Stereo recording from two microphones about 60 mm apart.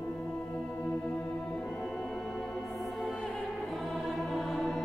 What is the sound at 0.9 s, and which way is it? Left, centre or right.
Music, centre.